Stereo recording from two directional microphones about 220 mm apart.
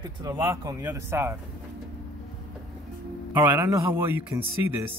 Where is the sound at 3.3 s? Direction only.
10° right (ahead or behind).